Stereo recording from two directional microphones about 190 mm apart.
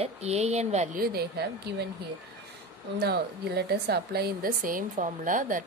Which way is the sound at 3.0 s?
55° right (ahead or behind).